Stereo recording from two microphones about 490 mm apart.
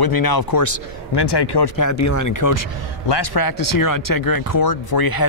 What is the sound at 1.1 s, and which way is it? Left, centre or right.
Speech, left.